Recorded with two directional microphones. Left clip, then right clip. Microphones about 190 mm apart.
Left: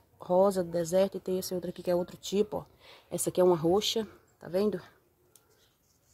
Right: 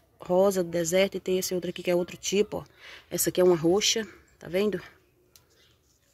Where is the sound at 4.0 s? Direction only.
35° right (ahead or behind).